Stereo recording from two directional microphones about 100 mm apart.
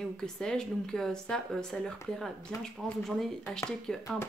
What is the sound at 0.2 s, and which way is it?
Speech, 5° left (ahead or behind).